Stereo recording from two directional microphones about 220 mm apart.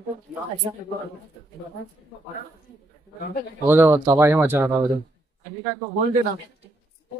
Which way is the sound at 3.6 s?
10° right (ahead or behind).